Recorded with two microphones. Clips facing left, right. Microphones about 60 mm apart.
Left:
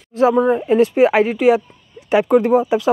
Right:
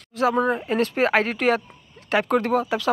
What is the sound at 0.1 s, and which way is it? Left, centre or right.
Speech, left.